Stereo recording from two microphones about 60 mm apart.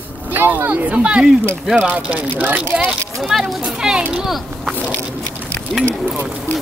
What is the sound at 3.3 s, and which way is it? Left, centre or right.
Speech, centre.